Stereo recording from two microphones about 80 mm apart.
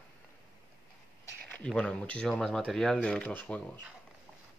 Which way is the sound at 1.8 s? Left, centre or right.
Centre.